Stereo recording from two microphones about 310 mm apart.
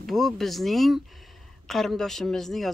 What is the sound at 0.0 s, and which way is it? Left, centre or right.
Speech, centre.